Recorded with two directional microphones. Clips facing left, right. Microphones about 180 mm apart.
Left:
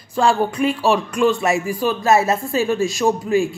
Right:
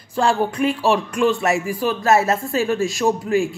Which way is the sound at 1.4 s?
15° left (ahead or behind).